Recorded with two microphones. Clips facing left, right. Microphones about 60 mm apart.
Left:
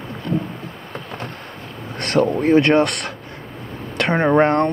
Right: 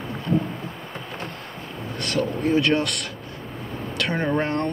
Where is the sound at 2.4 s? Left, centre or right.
Left.